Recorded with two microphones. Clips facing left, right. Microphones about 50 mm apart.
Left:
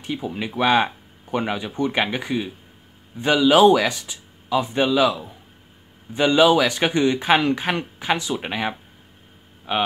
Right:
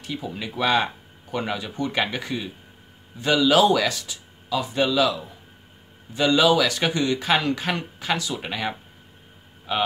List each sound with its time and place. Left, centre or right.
0.0 s speech: left